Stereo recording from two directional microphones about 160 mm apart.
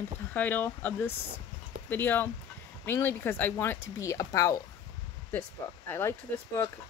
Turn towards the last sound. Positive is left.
turn(degrees=15)  # may be behind; listen again after turning